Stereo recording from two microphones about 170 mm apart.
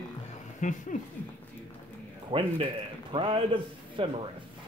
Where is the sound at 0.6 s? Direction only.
45° left (ahead or behind).